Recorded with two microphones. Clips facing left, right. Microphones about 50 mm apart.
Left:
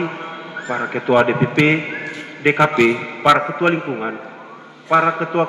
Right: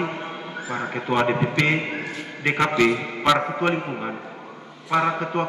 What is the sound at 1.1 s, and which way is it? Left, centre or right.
A man's voice, left.